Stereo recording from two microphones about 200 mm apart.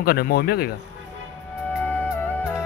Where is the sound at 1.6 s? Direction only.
10° left (ahead or behind).